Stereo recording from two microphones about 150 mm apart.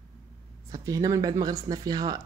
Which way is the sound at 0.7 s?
25° right (ahead or behind).